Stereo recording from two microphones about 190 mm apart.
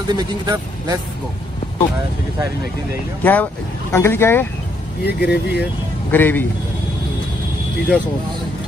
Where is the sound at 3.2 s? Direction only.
10° left (ahead or behind).